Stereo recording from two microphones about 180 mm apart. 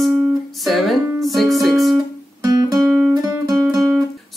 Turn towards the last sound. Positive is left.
turn(degrees=-15)  # may be behind; listen again after turning